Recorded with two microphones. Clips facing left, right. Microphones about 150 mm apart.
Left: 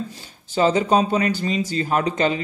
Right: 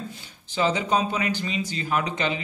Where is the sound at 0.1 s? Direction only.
40° left (ahead or behind).